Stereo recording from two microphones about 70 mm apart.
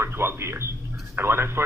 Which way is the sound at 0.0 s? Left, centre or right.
Right.